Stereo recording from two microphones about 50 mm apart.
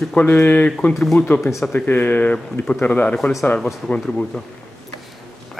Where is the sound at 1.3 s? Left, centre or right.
Left.